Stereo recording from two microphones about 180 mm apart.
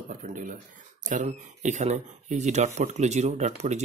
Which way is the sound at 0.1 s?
45° right (ahead or behind).